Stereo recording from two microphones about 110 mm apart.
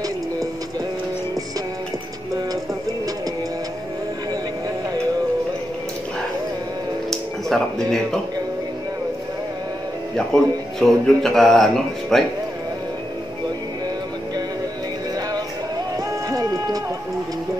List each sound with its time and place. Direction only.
7.1 s music: 5° left (ahead or behind)
10.1 s speech: 5° left (ahead or behind)
16.3 s music: 35° right (ahead or behind)